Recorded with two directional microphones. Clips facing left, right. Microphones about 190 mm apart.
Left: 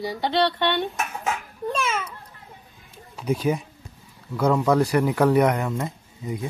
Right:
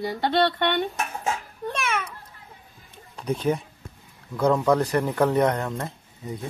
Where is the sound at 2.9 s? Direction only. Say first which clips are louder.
Left 3 dB; 5° left (ahead or behind).